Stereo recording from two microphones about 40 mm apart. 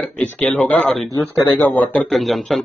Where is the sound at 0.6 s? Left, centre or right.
Left.